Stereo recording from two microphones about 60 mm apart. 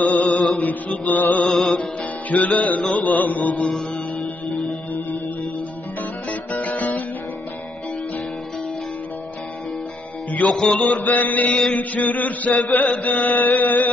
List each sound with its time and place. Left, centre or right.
0.2 s music: centre
0.7 s chant: left
1.4 s music: centre
2.2 s chant: left
3.7 s music: centre
6.5 s music: left
10.5 s music: centre
11.0 s chant: left